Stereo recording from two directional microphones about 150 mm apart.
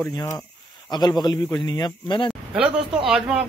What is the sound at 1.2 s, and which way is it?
Speech, 25° left (ahead or behind).